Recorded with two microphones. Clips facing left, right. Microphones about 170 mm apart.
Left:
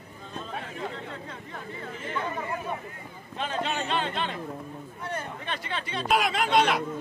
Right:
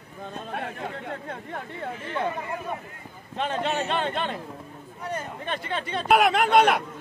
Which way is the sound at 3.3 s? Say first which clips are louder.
Right 4 dB; 55° right (ahead or behind).